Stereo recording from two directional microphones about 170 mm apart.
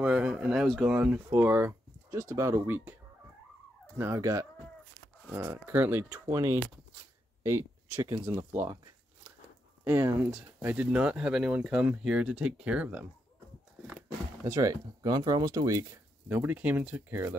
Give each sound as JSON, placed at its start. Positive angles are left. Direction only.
{"t": 0.0, "sound": "speech", "side_deg": -5}
{"t": 4.0, "sound": "speech", "side_deg": -15}
{"t": 9.8, "sound": "speech", "side_deg": -10}
{"t": 14.5, "sound": "speech", "side_deg": -20}